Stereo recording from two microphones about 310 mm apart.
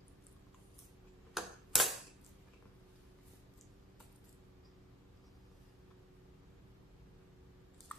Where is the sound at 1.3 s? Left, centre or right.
Centre.